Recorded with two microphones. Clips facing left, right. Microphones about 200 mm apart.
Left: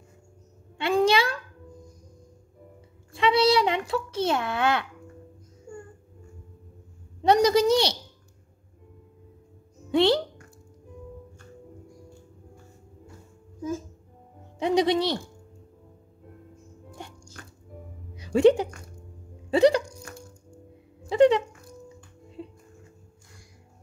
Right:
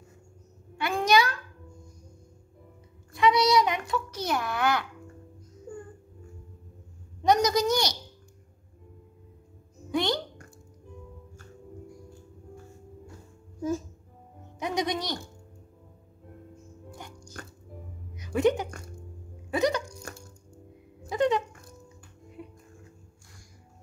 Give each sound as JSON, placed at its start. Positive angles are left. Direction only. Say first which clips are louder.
{"t": 0.7, "sound": "a sound", "louder": "left 2 dB", "side_deg": 30}
{"t": 3.1, "sound": "a sound", "louder": "left 2 dB", "side_deg": 30}
{"t": 7.2, "sound": "a sound", "louder": "left 4 dB", "side_deg": 30}
{"t": 9.8, "sound": "music", "louder": "left 7 dB", "side_deg": 30}
{"t": 14.6, "sound": "music", "louder": "left 8 dB", "side_deg": 30}
{"t": 17.4, "sound": "music", "louder": "right 4 dB", "side_deg": -45}
{"t": 18.1, "sound": "music", "louder": "left 6 dB", "side_deg": 30}
{"t": 19.5, "sound": "hiccup", "louder": "left 7 dB", "side_deg": 30}
{"t": 22.4, "sound": "music", "louder": "left 4 dB", "side_deg": 25}